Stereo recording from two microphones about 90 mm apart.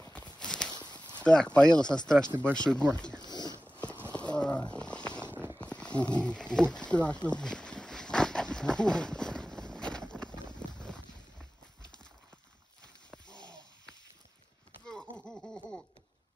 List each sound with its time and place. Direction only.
0.0 s clip-clop: 15° left (ahead or behind)
0.4 s walk: 10° left (ahead or behind)
1.1 s speech: 10° left (ahead or behind)
3.2 s zipper: 50° left (ahead or behind)
3.6 s clip-clop: 15° left (ahead or behind)
4.1 s a sound: 15° left (ahead or behind)
5.3 s a sound: 25° right (ahead or behind)
5.6 s wild animals: 15° left (ahead or behind)
10.6 s boat: 10° left (ahead or behind)
14.9 s wheeze: 5° left (ahead or behind)